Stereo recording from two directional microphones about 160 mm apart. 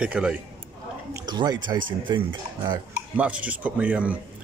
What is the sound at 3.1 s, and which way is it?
Speech, 10° right (ahead or behind).